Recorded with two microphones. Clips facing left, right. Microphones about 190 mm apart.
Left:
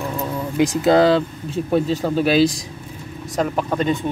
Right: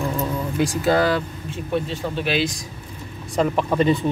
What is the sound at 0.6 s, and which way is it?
Speech, 20° left (ahead or behind).